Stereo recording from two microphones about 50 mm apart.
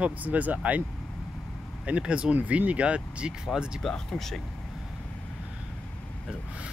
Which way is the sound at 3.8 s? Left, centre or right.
Centre.